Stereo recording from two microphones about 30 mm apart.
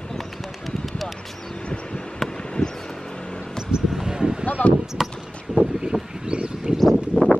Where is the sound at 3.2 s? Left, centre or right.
Left.